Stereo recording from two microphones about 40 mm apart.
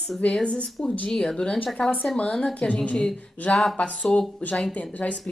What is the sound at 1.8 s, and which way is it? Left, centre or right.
Speech, left.